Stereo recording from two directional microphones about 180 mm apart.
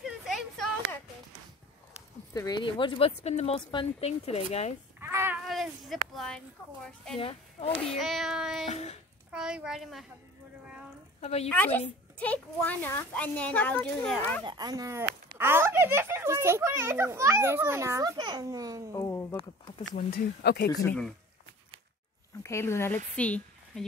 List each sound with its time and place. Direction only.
0.0 s a sound: centre (ahead or behind)
2.3 s speech: 20° left (ahead or behind); by 4.7 s 40° left (ahead or behind)
5.0 s a sound: 10° right (ahead or behind)
5.4 s a woman's voice: centre (ahead or behind)
8.6 s speech: 35° left (ahead or behind)
9.3 s a child's voice: 5° right (ahead or behind)
11.1 s a woman's voice: 35° left (ahead or behind)
11.4 s speech: 5° left (ahead or behind)
14.4 s speech: 25° right (ahead or behind)
18.9 s a sound: 15° left (ahead or behind)
19.9 s speech: 50° left (ahead or behind)
20.8 s speech: 5° left (ahead or behind)
22.4 s speech: 15° left (ahead or behind)